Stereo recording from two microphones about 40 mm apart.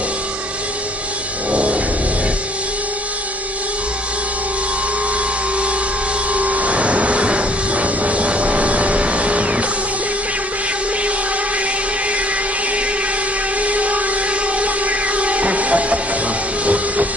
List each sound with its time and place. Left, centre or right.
1.5 s music: right
6.3 s vehicle: right
13.6 s a sound: right
14.6 s music: right
16.6 s train: right